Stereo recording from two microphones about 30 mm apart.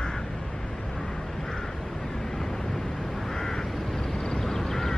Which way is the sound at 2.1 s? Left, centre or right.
Centre.